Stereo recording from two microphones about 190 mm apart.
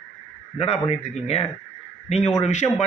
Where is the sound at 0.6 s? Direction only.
35° left (ahead or behind).